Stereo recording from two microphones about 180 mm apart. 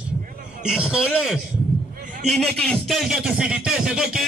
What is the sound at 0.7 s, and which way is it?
Speech, 5° right (ahead or behind).